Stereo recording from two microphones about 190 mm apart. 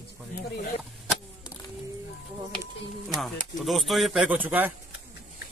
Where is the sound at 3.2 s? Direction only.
Centre (ahead or behind).